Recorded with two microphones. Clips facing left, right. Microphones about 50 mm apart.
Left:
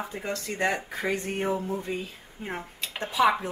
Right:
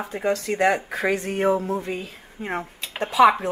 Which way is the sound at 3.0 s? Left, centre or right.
Right.